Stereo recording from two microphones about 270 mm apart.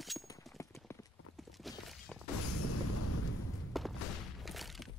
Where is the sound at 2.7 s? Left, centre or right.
Left.